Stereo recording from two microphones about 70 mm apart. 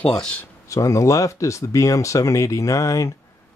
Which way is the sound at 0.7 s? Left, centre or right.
Left.